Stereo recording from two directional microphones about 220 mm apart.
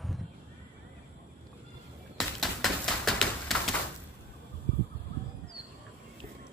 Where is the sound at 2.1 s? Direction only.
Centre (ahead or behind).